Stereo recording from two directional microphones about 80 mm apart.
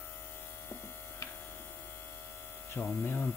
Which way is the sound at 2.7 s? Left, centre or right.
Left.